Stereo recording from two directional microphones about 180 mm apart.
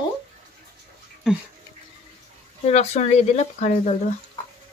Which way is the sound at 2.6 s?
35° left (ahead or behind).